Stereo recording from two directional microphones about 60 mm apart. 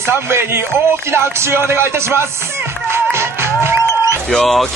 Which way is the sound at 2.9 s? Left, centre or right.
Right.